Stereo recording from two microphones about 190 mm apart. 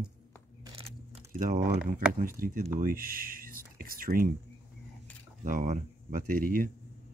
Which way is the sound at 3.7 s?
50° right (ahead or behind).